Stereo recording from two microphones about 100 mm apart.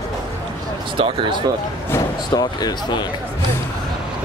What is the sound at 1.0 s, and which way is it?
Speech, 60° right (ahead or behind).